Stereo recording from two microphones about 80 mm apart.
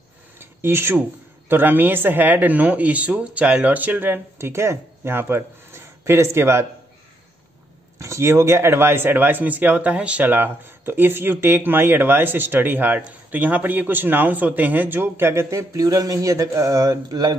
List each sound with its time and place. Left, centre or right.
0.4 s filing: right
1.5 s speech: right
8.0 s speech: right